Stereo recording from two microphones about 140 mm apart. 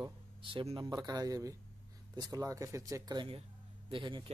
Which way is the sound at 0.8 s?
30° right (ahead or behind).